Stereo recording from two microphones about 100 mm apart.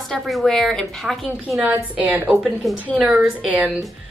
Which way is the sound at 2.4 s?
5° left (ahead or behind).